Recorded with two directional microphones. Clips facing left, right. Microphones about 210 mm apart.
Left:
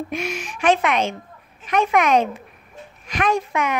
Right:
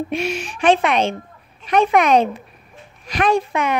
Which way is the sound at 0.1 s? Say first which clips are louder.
Right 4 dB; 30° right (ahead or behind).